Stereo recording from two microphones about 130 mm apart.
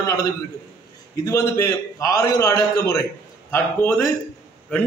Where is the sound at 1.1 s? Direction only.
25° left (ahead or behind).